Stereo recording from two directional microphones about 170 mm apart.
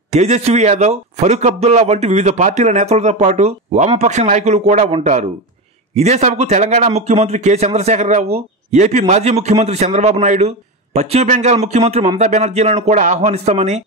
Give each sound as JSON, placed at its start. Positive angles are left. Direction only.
{"t": 0.1, "sound": "a man's voice", "side_deg": -40}